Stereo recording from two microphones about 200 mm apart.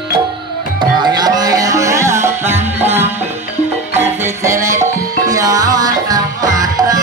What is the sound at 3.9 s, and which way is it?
Music, 10° right (ahead or behind).